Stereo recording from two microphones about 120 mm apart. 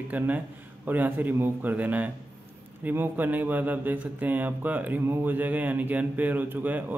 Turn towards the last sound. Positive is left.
turn(degrees=-15)  # may be behind; listen again after turning